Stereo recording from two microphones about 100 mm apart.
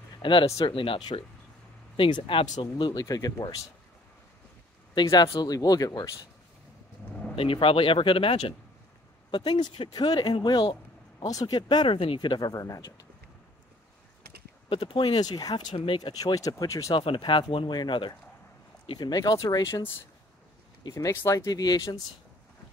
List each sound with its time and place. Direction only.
0.2 s speech: 55° left (ahead or behind); by 3.5 s 40° left (ahead or behind)
4.9 s speech: 40° left (ahead or behind)
7.3 s speech: 65° left (ahead or behind)
9.3 s speech: 50° left (ahead or behind)
11.2 s speech: 40° left (ahead or behind)
11.9 s speech: 65° left (ahead or behind); by 12.8 s 35° left (ahead or behind)
14.7 s speech: 60° left (ahead or behind)
15.1 s speech: 40° left (ahead or behind)
15.7 s speech: 65° left (ahead or behind)
16.0 s speech: 45° left (ahead or behind)
16.9 s speech: 55° left (ahead or behind)
18.9 s speech: 40° left (ahead or behind)
20.9 s speech: 30° left (ahead or behind)
21.5 s speech: 40° left (ahead or behind)